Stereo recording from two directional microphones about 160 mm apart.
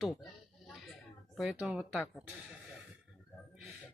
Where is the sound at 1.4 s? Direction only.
5° right (ahead or behind).